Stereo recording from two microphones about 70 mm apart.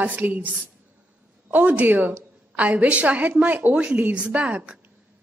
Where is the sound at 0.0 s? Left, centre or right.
Right.